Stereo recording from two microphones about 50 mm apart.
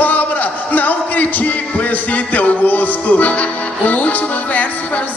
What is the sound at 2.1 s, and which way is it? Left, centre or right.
Music, left.